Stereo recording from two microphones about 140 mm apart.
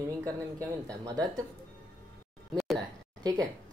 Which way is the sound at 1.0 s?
30° right (ahead or behind).